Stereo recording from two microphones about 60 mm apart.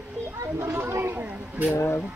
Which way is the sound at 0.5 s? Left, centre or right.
Right.